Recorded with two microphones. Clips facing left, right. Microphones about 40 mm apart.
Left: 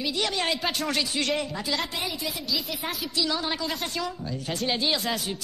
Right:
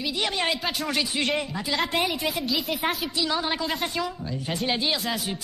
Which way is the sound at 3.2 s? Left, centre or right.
Centre.